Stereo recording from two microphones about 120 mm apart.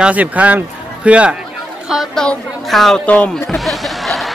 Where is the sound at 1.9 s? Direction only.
Centre (ahead or behind).